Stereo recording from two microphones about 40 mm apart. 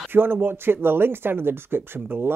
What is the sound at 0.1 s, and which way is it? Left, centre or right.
Speech, right.